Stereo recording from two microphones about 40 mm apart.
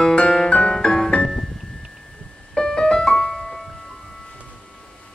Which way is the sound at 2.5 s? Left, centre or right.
Centre.